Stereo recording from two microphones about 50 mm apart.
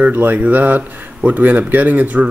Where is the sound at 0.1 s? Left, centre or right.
Right.